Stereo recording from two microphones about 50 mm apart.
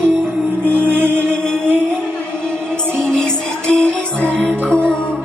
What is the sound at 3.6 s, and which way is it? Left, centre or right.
Music, left.